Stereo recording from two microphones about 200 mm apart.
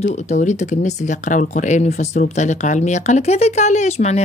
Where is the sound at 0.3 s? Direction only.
35° left (ahead or behind).